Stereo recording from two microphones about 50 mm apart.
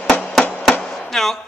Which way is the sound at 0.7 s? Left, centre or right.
Centre.